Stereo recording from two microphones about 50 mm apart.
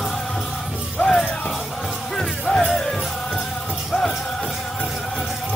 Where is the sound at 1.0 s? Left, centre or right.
Centre.